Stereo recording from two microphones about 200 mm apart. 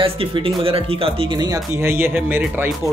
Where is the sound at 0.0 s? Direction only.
25° right (ahead or behind); by 2.7 s 10° right (ahead or behind).